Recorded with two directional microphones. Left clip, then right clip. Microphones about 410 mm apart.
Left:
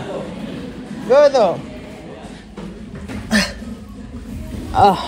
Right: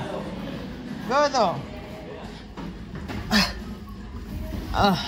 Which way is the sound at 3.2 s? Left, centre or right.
Centre.